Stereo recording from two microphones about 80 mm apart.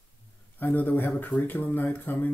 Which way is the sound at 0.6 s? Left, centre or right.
Left.